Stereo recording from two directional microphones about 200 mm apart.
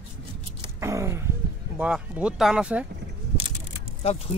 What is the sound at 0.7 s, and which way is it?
Gasp, 15° right (ahead or behind).